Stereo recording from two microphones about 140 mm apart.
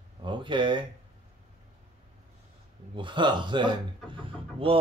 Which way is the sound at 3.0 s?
35° right (ahead or behind).